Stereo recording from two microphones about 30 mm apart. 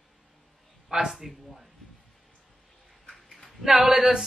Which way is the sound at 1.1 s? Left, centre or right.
Centre.